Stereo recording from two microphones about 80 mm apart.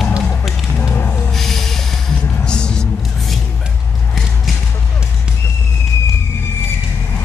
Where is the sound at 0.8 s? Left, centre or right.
Left.